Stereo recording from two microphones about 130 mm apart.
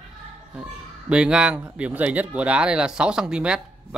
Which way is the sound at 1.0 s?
10° right (ahead or behind).